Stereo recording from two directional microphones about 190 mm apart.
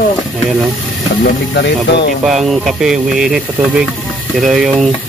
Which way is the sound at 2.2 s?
Centre (ahead or behind).